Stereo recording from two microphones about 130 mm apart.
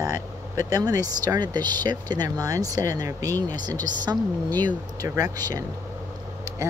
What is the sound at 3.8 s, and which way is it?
Speech, 80° left.